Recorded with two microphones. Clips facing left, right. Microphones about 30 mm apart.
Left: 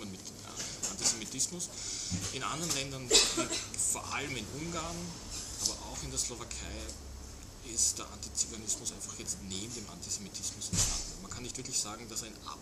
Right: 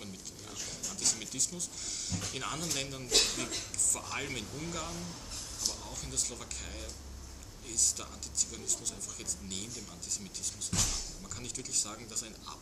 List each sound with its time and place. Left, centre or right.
0.9 s a sound: centre
1.2 s speech: centre
10.7 s speech: right
11.4 s speech: centre